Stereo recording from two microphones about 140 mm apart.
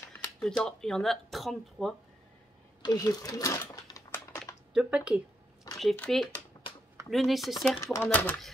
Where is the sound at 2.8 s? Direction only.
25° left (ahead or behind).